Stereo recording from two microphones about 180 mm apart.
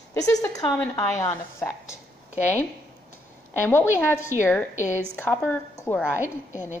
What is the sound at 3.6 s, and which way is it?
A woman's voice, 15° left (ahead or behind).